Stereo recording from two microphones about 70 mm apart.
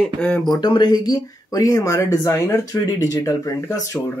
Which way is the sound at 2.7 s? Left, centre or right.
Left.